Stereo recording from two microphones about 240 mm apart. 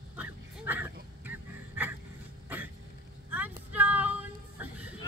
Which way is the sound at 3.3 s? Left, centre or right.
Centre.